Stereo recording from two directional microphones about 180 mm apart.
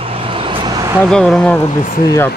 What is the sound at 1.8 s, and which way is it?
Speech, 55° left (ahead or behind).